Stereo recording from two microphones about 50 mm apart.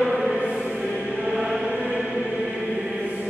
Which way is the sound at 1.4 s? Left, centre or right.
Centre.